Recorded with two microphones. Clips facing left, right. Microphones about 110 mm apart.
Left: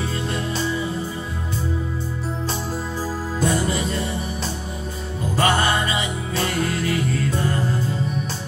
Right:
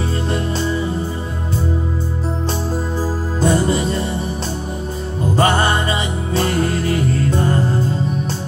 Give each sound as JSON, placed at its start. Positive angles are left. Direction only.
{"t": 3.3, "sound": "music", "side_deg": -35}
{"t": 5.3, "sound": "music", "side_deg": -35}